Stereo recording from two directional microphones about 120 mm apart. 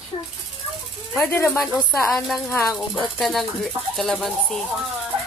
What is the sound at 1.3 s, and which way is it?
Speech, 20° left (ahead or behind).